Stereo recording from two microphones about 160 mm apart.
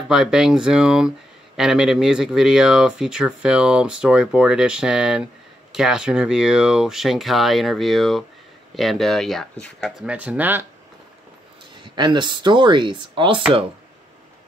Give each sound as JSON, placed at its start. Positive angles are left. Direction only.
{"t": 0.1, "sound": "speech", "side_deg": -5}
{"t": 11.7, "sound": "speech", "side_deg": -30}